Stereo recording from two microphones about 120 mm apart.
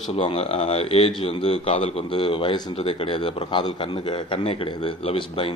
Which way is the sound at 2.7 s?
50° left (ahead or behind).